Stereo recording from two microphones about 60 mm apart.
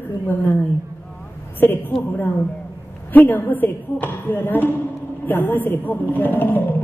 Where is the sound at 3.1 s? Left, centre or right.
Left.